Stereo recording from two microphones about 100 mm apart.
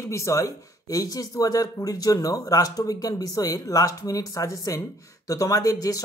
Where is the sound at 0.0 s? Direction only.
30° left (ahead or behind).